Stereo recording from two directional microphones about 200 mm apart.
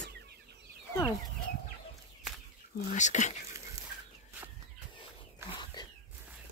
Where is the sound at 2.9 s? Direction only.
35° left (ahead or behind).